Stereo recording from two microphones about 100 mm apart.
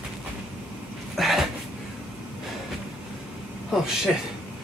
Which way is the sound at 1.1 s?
Centre (ahead or behind).